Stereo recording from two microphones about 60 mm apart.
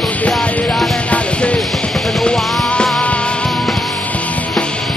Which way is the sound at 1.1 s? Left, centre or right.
Left.